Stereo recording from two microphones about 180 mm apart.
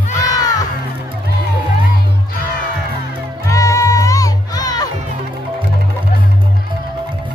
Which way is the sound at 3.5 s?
15° left (ahead or behind).